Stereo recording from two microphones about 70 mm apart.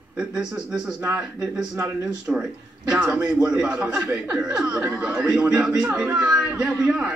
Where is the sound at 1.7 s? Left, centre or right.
Right.